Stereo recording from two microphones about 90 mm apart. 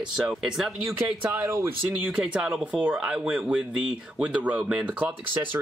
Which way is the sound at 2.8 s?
20° right (ahead or behind).